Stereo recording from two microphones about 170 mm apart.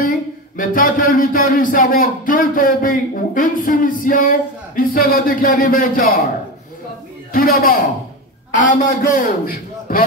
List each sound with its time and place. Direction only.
0.6 s speech: 55° left (ahead or behind)
7.3 s a man's voice: 60° left (ahead or behind)